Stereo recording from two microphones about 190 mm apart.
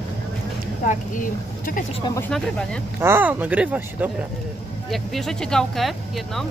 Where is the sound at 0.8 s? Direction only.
40° left (ahead or behind).